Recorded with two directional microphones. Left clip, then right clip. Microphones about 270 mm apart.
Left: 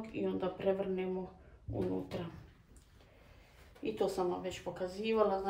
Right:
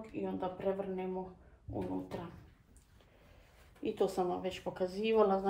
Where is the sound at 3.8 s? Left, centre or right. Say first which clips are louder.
Right 1 dB; right.